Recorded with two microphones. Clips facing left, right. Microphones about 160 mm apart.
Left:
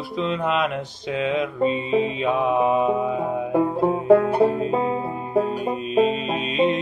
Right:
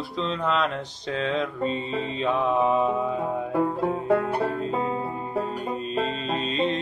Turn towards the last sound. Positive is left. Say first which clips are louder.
# left 4 dB
turn(degrees=10)  # may be behind; listen again after turning